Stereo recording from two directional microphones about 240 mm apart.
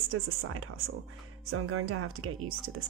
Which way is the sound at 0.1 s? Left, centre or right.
Right.